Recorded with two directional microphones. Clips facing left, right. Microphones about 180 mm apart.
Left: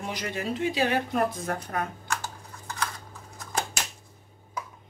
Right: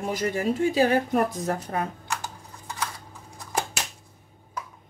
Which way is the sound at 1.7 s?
30° right (ahead or behind).